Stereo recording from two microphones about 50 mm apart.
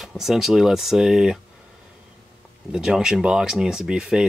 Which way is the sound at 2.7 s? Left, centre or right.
Centre.